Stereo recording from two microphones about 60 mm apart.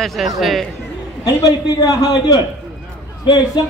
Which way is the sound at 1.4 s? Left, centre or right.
Left.